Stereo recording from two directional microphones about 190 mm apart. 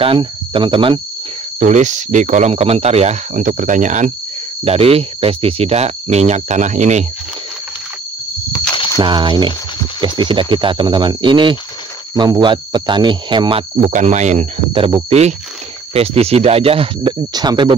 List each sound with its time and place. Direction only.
0.0 s speech: 30° right (ahead or behind)
1.6 s speech: 40° right (ahead or behind)
8.5 s a sound: 25° left (ahead or behind)
8.9 s speech: 25° right (ahead or behind)
14.7 s speech: 25° right (ahead or behind)